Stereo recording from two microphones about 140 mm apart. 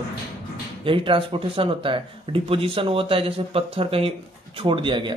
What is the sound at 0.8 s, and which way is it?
Speech, 40° right (ahead or behind).